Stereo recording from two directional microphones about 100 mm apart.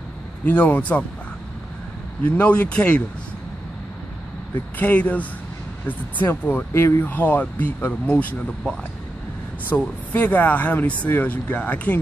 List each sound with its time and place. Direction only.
0.5 s speech: 15° left (ahead or behind)
2.2 s speech: 10° left (ahead or behind)
4.7 s speech: 15° left (ahead or behind)